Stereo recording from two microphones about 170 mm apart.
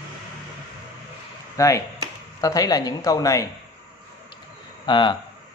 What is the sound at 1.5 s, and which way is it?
A man's voice, 20° left (ahead or behind).